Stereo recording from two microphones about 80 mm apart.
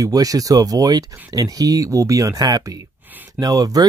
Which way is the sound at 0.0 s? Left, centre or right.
Right.